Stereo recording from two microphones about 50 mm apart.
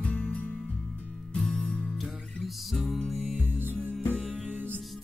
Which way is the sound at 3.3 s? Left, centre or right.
Right.